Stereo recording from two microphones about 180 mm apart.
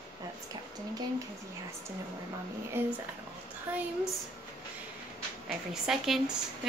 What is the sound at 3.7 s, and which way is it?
Speech, 10° right (ahead or behind).